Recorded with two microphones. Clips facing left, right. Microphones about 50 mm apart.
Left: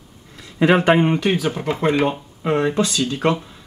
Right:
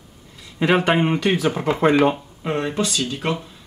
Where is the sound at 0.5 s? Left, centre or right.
Centre.